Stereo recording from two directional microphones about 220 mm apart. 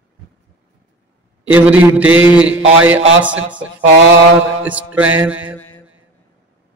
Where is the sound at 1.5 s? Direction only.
5° right (ahead or behind).